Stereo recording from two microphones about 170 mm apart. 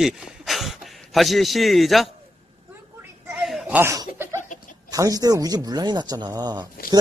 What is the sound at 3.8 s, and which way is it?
Chuckle, 15° right (ahead or behind).